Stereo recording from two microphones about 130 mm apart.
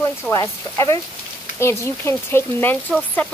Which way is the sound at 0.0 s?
15° left (ahead or behind).